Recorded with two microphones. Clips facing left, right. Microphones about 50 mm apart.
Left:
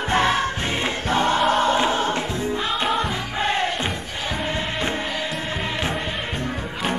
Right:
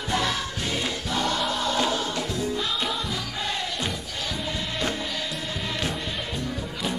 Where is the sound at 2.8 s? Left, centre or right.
Left.